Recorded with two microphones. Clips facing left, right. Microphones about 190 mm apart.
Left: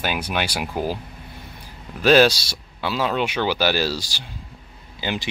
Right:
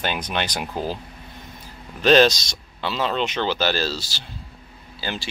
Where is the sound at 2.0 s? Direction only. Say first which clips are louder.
Even; 10° left (ahead or behind).